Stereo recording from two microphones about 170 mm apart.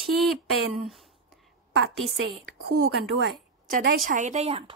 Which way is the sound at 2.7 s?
70° right (ahead or behind).